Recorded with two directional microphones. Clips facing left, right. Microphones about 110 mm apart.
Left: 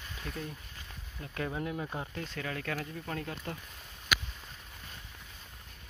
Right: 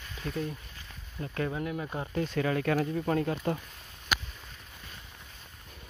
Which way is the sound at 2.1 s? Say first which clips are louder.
Right 10 dB; 15° right (ahead or behind).